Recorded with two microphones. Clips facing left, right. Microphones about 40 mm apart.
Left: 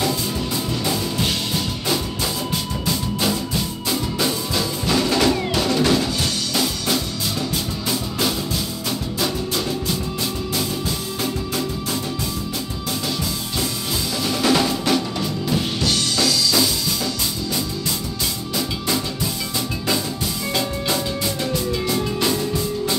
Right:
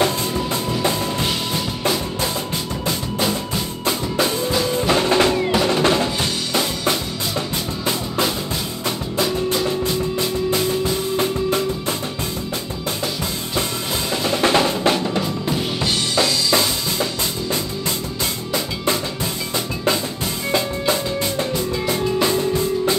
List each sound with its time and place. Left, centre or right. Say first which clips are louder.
4.7 s music: right 3 dB; right
14.2 s drum: right 2 dB; right
15.8 s music: right 3 dB; right
20.5 s music: right 3 dB; right